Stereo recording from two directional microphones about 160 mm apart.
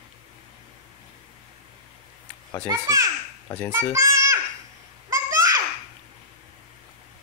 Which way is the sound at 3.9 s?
20° right (ahead or behind).